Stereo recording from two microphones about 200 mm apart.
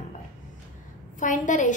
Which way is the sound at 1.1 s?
40° left (ahead or behind).